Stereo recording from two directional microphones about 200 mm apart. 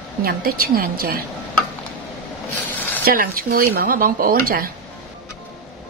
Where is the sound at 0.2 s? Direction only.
45° right (ahead or behind).